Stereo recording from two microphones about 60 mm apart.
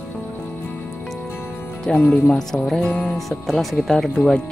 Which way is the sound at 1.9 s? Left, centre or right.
Centre.